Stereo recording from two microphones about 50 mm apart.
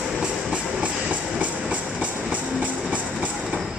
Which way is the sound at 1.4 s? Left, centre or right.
Right.